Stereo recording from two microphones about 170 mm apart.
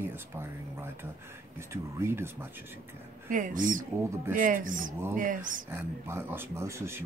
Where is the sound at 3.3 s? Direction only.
50° right (ahead or behind).